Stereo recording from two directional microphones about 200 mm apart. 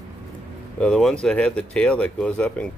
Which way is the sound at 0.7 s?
5° left (ahead or behind).